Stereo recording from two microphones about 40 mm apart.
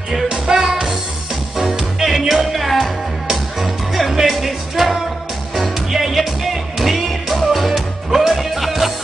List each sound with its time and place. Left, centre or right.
0.3 s music: centre